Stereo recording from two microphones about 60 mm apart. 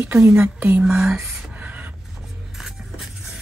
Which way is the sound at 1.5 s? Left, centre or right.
Right.